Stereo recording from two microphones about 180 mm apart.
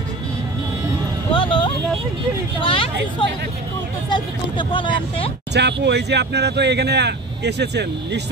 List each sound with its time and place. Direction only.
1.3 s vehicle: 30° left (ahead or behind)
2.6 s speech: 30° left (ahead or behind)
5.5 s speech: 70° right (ahead or behind)